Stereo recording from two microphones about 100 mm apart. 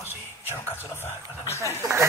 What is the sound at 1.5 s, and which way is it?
Speech, 30° right (ahead or behind).